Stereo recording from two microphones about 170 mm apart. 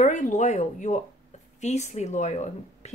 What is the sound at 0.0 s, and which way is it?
Speech, 45° left (ahead or behind).